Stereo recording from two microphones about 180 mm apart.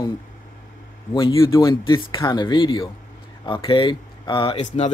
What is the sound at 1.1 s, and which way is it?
Speech, 25° left (ahead or behind).